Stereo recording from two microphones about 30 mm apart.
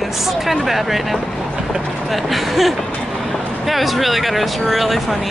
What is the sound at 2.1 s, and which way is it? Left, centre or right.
Speech, centre.